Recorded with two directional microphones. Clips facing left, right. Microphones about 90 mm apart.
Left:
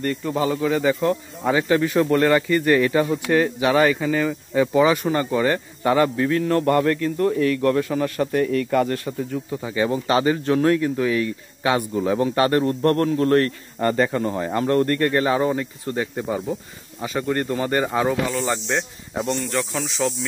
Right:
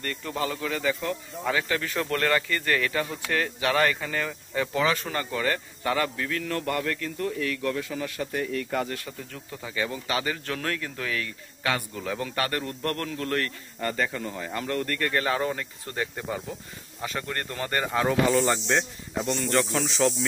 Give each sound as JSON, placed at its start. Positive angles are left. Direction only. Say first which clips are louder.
{"t": 0.0, "sound": "speech", "louder": "left 8 dB", "side_deg": 15}
{"t": 9.3, "sound": "speech", "louder": "left 10 dB", "side_deg": 20}
{"t": 9.8, "sound": "a man's voice", "louder": "left 12 dB", "side_deg": 35}
{"t": 15.1, "sound": "speech", "louder": "left 7 dB", "side_deg": 15}
{"t": 18.3, "sound": "speech", "louder": "even", "side_deg": 0}